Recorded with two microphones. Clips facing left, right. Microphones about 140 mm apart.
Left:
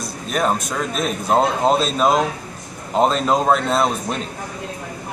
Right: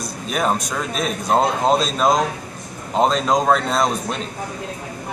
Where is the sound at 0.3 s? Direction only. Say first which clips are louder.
Left 1 dB; centre (ahead or behind).